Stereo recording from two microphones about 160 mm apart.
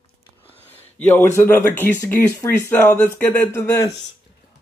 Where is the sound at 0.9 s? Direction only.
10° left (ahead or behind).